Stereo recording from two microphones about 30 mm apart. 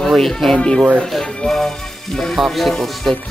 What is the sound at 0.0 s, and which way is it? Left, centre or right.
Music, centre.